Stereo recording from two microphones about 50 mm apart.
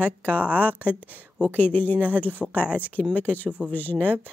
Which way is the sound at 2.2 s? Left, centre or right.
Left.